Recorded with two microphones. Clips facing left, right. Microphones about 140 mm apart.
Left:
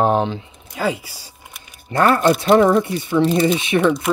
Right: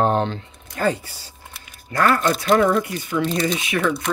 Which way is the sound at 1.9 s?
30° left (ahead or behind).